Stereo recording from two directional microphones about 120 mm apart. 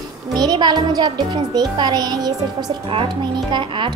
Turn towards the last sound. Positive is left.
turn(degrees=-40)  # may be behind; listen again after turning